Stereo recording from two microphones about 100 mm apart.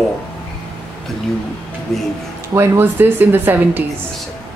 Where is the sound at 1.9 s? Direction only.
Centre (ahead or behind).